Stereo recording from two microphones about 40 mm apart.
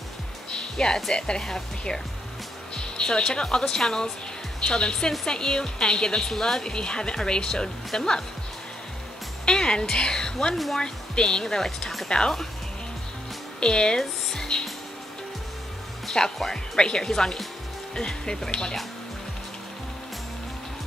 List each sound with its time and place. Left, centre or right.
0.5 s music: centre
1.1 s speech: left
2.7 s music: centre
3.4 s speech: centre
9.5 s speech: centre
10.5 s speech: centre
10.8 s speech: left
13.6 s speech: left
16.1 s speech: centre